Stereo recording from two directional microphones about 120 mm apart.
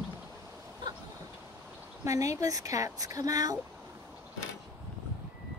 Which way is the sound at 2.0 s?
25° right (ahead or behind).